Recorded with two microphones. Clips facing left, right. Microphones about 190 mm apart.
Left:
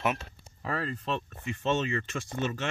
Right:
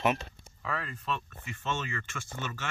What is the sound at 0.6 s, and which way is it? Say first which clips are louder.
Speech: left 4 dB; 35° left (ahead or behind).